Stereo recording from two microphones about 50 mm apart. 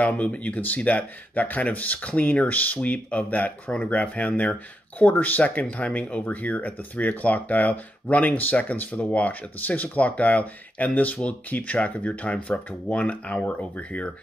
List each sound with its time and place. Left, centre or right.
0.0 s speech: left